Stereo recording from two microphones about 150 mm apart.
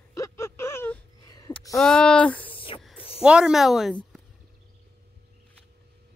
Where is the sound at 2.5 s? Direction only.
35° left (ahead or behind).